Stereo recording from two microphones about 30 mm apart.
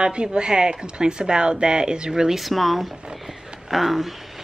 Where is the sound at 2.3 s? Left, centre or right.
Centre.